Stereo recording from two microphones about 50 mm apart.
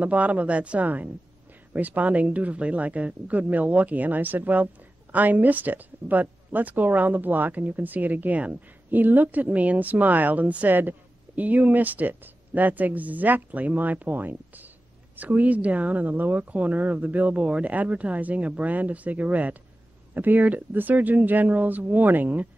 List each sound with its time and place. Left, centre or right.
0.0 s a woman's voice: right